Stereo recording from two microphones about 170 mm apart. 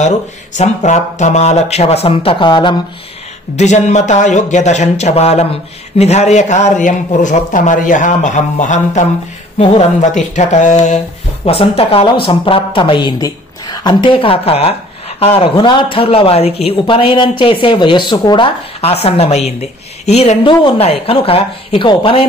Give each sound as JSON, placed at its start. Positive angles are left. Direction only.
{"t": 0.6, "sound": "a woman's voice", "side_deg": 45}
{"t": 3.5, "sound": "a woman's voice", "side_deg": 45}